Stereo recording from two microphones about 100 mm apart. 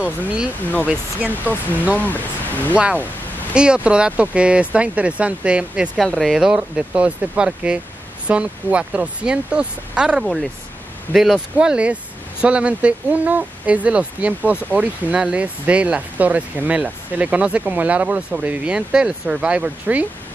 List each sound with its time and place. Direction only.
1.5 s speech: 15° right (ahead or behind)
2.0 s speech: 15° left (ahead or behind)
2.7 s speech: 15° right (ahead or behind)
6.0 s speech: centre (ahead or behind)
11.5 s speech: 10° right (ahead or behind)